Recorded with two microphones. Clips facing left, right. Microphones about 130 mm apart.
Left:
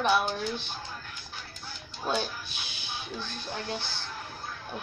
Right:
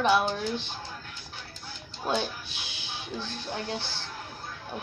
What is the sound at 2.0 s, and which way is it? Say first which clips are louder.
A woman's voice: right 1 dB; 25° right (ahead or behind).